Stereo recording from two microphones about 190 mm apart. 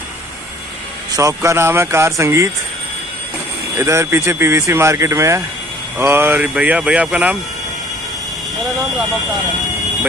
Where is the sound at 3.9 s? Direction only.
15° right (ahead or behind).